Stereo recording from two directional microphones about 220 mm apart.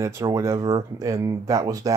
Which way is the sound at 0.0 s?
15° right (ahead or behind).